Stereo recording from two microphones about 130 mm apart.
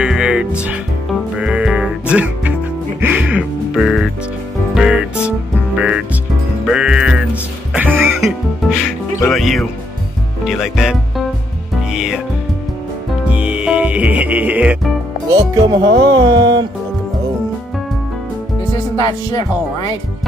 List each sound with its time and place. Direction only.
0.0 s music: 5° right (ahead or behind)
8.2 s music: centre (ahead or behind)
9.3 s speech: centre (ahead or behind)
11.9 s music: 5° right (ahead or behind)
13.2 s music: 10° right (ahead or behind)
15.2 s speech: 35° right (ahead or behind)
18.9 s speech: 30° left (ahead or behind)